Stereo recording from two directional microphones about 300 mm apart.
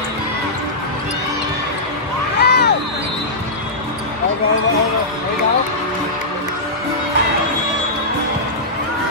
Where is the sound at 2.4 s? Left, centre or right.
Left.